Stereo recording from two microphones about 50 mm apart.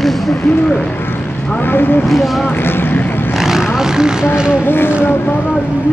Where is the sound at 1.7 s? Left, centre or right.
Left.